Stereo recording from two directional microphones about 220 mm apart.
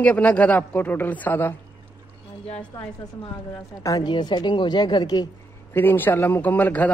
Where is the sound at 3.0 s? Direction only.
15° left (ahead or behind).